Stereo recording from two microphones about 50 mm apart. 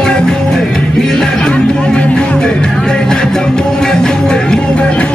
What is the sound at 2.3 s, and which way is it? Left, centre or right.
Music, centre.